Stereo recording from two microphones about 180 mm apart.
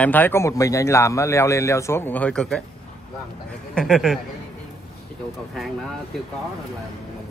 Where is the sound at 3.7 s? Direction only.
Centre (ahead or behind).